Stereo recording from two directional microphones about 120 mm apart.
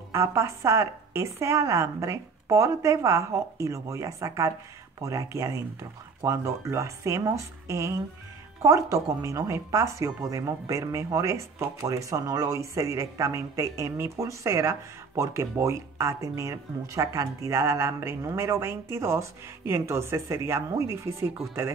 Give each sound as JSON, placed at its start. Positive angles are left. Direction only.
{"t": 0.1, "sound": "speech", "side_deg": -25}